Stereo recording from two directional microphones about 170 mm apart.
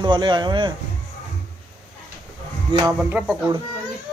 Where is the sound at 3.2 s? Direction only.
10° right (ahead or behind).